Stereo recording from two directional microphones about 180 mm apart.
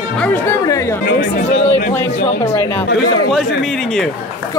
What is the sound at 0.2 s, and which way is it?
Speech, 10° left (ahead or behind).